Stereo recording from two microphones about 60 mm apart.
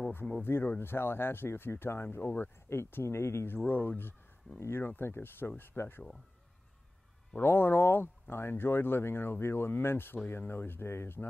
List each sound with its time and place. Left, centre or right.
0.4 s speech: left
2.8 s speech: left
3.5 s speech: left
7.3 s speech: left